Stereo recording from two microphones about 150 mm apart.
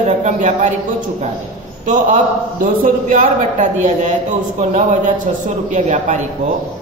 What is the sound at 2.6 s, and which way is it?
A man's voice, 60° right (ahead or behind).